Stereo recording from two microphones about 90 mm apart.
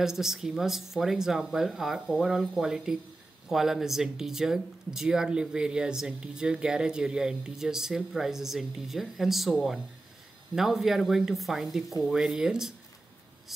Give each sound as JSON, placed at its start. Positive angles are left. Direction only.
{"t": 0.0, "sound": "speech", "side_deg": -5}